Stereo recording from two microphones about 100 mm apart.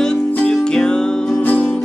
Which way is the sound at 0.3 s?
10° left (ahead or behind).